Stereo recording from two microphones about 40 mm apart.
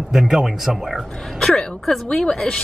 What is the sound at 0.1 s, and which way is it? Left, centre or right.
Speech, centre.